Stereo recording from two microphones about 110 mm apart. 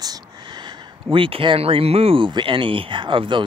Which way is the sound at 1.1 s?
50° right (ahead or behind).